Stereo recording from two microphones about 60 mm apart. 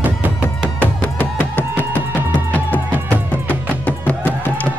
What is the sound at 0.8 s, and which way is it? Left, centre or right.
Music, left.